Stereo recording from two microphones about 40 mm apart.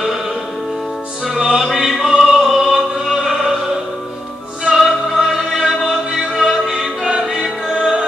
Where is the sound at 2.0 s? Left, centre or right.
Centre.